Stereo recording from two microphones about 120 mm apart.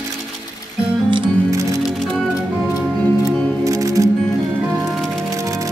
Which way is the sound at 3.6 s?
30° right (ahead or behind).